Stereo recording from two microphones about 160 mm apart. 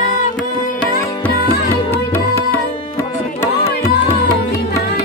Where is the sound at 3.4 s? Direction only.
20° left (ahead or behind).